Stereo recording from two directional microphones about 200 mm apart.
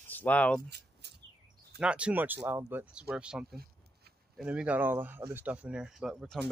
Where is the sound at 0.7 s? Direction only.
55° right (ahead or behind).